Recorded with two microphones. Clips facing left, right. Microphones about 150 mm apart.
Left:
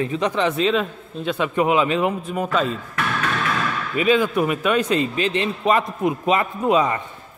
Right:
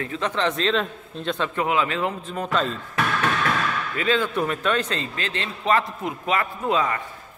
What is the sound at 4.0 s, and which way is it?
A man's voice, 15° left (ahead or behind).